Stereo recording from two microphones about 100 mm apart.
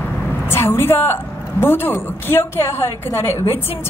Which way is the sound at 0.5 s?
25° left (ahead or behind).